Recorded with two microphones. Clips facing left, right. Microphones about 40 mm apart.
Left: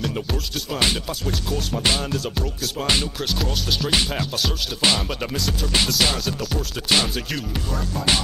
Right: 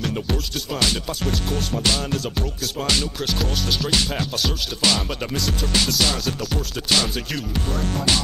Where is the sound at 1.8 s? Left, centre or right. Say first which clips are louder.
Left 1 dB; centre.